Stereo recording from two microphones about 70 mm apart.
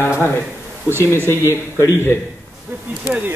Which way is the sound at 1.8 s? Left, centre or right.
Left.